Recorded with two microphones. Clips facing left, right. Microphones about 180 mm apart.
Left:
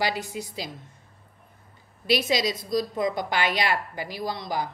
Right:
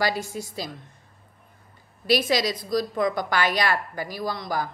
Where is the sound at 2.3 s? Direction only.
20° left (ahead or behind).